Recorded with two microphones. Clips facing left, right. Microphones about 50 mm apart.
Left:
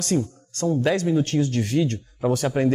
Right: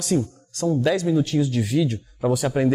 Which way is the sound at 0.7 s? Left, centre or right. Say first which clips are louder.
Right 1 dB; centre.